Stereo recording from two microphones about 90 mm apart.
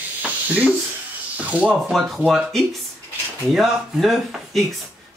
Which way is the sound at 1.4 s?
15° right (ahead or behind).